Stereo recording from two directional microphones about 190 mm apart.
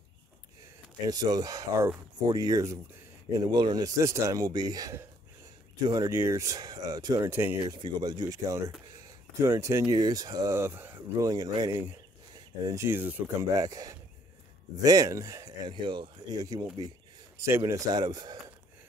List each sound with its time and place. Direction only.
1.0 s speech: 20° right (ahead or behind)
7.6 s speech: 25° right (ahead or behind)